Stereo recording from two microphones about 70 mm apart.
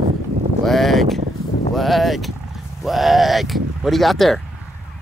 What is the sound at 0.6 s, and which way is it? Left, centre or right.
Speech, centre.